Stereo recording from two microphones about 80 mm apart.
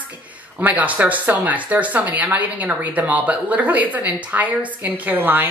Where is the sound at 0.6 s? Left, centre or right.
Centre.